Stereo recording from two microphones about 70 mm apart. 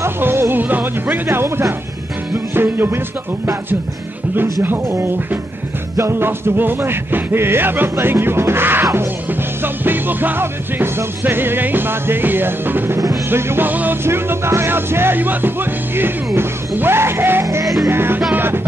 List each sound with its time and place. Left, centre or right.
0.0 s speech: right
2.3 s music: right
5.9 s music: right